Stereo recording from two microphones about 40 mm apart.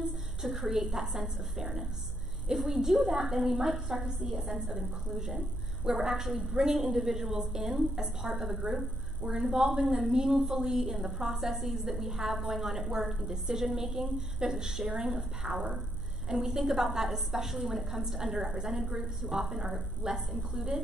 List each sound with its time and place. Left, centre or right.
0.4 s a woman's voice: centre
9.4 s a woman's voice: centre
15.4 s speech: right
16.3 s a woman's voice: centre